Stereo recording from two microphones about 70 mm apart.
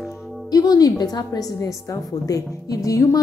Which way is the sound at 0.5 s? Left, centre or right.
Left.